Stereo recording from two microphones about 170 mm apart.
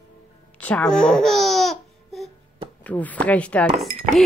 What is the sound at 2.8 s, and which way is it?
Speech, 10° left (ahead or behind).